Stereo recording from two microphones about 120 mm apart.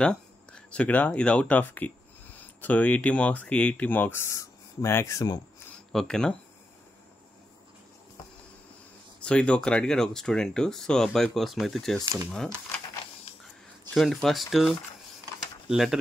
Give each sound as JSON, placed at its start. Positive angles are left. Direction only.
{"t": 0.0, "sound": "speech", "side_deg": 5}
{"t": 5.9, "sound": "speech", "side_deg": 5}
{"t": 9.2, "sound": "speech", "side_deg": 10}
{"t": 12.0, "sound": "speech", "side_deg": -25}
{"t": 13.9, "sound": "speech", "side_deg": 0}